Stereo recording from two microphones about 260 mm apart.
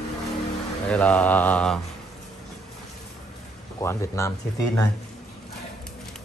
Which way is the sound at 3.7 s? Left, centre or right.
Centre.